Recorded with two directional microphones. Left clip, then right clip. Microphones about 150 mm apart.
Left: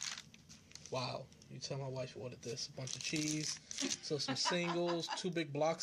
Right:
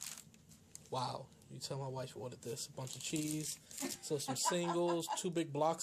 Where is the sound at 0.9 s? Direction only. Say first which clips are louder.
Right 1 dB; 5° right (ahead or behind).